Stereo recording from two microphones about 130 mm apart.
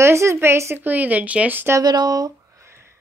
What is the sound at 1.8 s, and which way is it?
Speech, 30° right (ahead or behind).